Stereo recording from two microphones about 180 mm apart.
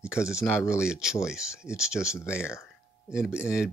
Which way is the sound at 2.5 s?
15° left (ahead or behind).